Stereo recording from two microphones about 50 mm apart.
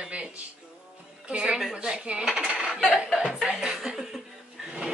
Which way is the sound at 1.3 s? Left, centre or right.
Centre.